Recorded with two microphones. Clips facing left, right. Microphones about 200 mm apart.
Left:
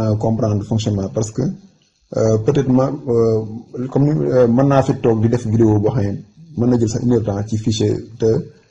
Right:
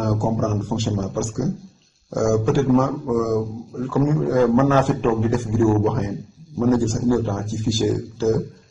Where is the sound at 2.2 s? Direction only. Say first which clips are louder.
Left 4 dB; 20° left (ahead or behind).